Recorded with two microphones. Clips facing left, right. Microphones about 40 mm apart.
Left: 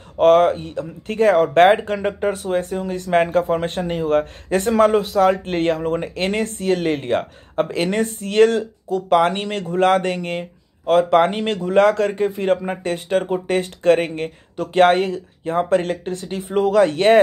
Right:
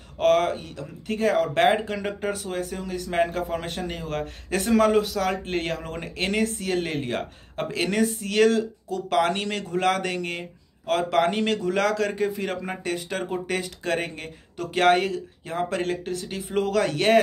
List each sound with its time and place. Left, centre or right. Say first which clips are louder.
0.2 s speech: left 7 dB; left
1.9 s speech: left 7 dB; left
3.8 s speech: left 11 dB; left
5.4 s speech: left 8 dB; left
14.6 s speech: left 5 dB; left